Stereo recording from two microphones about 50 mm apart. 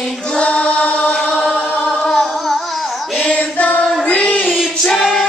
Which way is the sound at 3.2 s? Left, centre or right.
Left.